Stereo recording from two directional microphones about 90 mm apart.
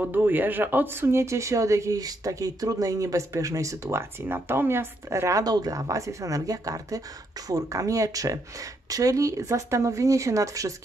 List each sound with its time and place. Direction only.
0.0 s speech: 20° right (ahead or behind)
5.4 s speech: 45° right (ahead or behind)